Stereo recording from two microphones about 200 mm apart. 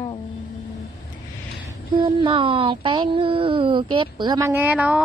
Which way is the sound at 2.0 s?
25° right (ahead or behind).